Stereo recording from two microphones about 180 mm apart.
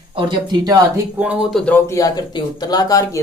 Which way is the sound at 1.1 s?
5° right (ahead or behind).